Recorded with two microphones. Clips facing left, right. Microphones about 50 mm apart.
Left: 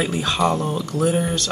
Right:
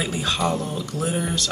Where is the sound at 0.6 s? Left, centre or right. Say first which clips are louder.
Left 5 dB; left.